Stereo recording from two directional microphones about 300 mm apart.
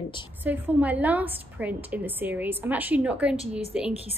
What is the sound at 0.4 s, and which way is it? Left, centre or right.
A woman's voice, centre.